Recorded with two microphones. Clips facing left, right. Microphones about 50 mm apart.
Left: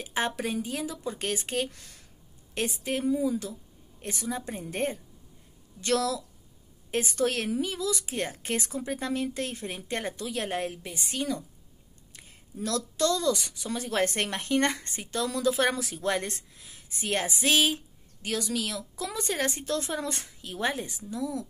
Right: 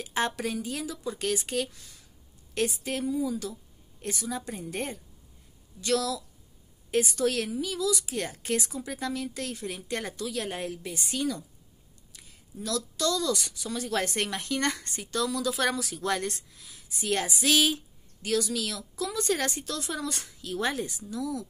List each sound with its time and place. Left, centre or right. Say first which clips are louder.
0.0 s speech: even; centre
1.7 s speech: left 2 dB; left
2.5 s a woman's voice: right 1 dB; left